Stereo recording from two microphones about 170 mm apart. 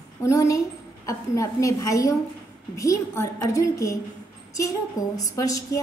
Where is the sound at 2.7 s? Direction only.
20° left (ahead or behind).